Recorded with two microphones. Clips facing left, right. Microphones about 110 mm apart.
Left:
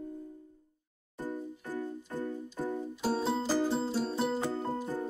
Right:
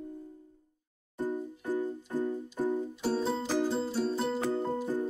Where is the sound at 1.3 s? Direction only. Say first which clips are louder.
Right 4 dB; 15° right (ahead or behind).